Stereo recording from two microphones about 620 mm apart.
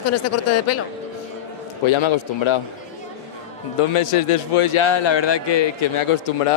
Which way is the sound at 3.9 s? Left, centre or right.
Left.